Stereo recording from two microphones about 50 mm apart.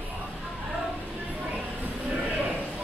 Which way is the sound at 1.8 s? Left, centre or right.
Right.